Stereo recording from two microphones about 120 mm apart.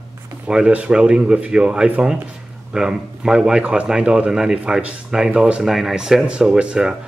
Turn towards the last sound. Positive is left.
turn(degrees=-5)  # may be behind; listen again after turning